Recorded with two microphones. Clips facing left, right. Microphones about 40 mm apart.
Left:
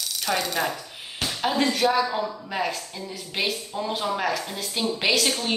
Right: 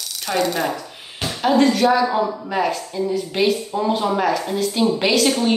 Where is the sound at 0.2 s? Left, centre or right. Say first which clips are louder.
Right 5 dB; centre.